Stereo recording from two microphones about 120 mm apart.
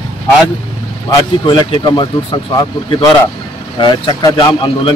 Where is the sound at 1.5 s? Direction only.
45° left (ahead or behind).